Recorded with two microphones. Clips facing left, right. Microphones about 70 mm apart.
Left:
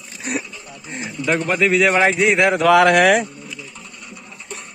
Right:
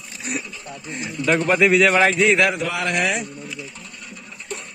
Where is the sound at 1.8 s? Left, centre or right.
Centre.